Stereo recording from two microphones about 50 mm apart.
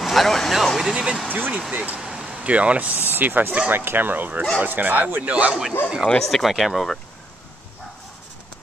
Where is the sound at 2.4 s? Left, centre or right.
Right.